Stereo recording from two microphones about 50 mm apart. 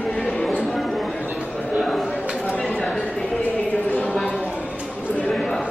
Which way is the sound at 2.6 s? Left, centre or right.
Left.